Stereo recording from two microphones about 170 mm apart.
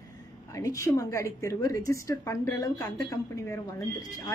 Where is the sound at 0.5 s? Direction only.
15° left (ahead or behind).